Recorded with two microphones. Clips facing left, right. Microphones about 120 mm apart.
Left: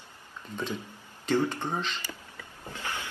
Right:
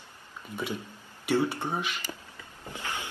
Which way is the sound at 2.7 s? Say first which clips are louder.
Even; 15° right (ahead or behind).